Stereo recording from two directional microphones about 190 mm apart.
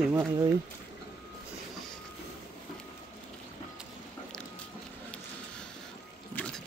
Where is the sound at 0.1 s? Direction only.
15° right (ahead or behind).